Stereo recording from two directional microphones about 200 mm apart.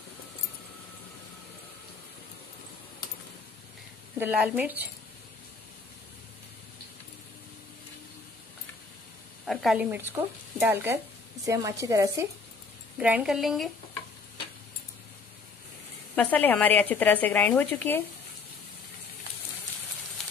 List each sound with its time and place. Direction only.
4.2 s speech: 5° right (ahead or behind)
9.5 s speech: centre (ahead or behind)
12.9 s speech: 5° right (ahead or behind)
16.2 s a woman's voice: 10° left (ahead or behind)